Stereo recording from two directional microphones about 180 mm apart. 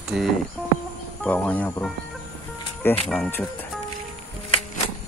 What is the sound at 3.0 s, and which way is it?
Speech, 5° left (ahead or behind).